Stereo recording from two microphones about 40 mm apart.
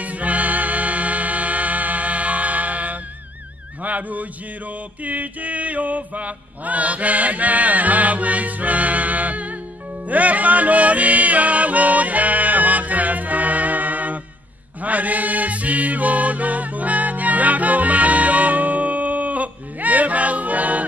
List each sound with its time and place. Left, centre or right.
0.0 s music: right
3.8 s mantra: right
10.0 s music: right